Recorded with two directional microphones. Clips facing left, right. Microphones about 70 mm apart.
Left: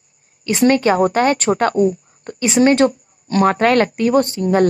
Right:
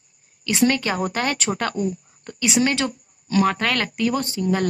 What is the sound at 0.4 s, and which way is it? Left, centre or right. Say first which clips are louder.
Speech: left 6 dB; left.